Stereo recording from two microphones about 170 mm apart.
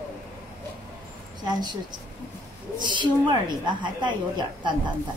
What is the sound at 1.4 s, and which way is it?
A woman's voice, 25° right (ahead or behind).